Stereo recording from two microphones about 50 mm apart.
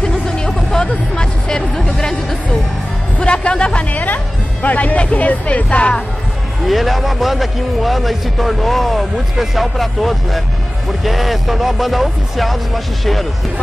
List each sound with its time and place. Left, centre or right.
0.0 s hubbub: centre
1.9 s music: centre
3.2 s music: left
3.9 s speech: left
6.6 s a man's voice: centre